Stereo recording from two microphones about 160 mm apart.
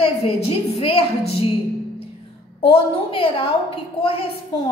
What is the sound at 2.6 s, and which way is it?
A woman's voice, 35° left (ahead or behind).